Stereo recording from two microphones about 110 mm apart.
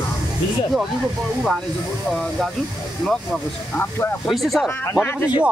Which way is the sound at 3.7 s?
20° left (ahead or behind).